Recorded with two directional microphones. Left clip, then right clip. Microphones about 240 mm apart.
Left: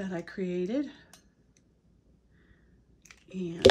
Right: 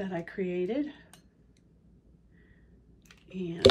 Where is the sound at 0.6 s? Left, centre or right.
Left.